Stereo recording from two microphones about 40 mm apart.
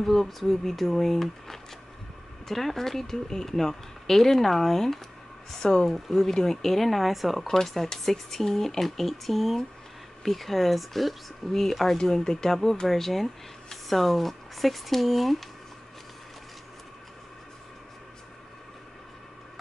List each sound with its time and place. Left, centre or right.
0.0 s speech: centre
5.9 s speech: centre
6.1 s speech: centre
7.4 s speech: centre